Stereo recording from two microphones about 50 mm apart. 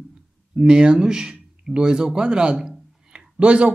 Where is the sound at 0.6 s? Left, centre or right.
Centre.